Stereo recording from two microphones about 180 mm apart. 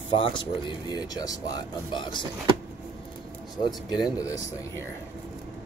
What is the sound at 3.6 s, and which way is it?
Speech, 25° left (ahead or behind).